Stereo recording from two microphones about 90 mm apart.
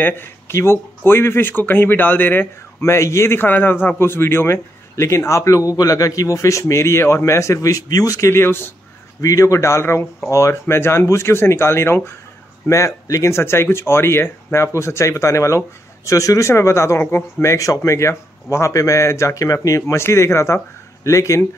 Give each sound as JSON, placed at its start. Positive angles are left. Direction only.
{"t": 0.0, "sound": "speech", "side_deg": 25}
{"t": 8.3, "sound": "speech", "side_deg": 25}
{"t": 9.2, "sound": "speech", "side_deg": 35}